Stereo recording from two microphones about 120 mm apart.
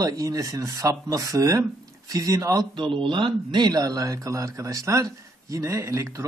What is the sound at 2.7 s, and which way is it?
Speech, 45° right (ahead or behind).